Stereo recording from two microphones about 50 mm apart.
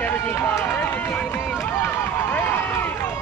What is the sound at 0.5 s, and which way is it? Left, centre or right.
Run, left.